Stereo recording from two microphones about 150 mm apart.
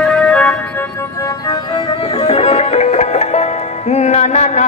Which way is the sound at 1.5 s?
30° left (ahead or behind).